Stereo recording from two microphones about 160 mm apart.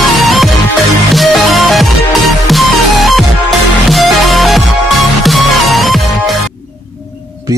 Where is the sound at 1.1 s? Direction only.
Centre (ahead or behind).